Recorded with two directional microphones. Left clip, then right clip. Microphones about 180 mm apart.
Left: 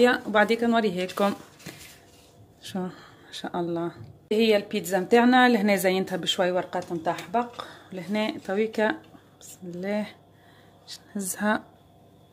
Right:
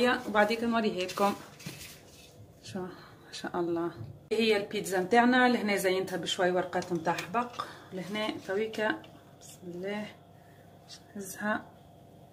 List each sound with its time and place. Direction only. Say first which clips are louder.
0.0 s a woman's voice: left 6 dB; 50° left (ahead or behind)
2.6 s speech: left 6 dB; 40° left (ahead or behind); by 3.9 s 25° left (ahead or behind)
4.3 s a woman's voice: left 6 dB; 40° left (ahead or behind); by 11.6 s 60° left (ahead or behind)